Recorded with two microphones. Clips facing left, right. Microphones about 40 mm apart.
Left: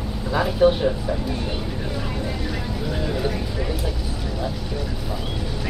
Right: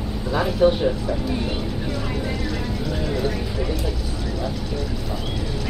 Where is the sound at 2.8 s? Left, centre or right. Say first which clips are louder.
Even; centre.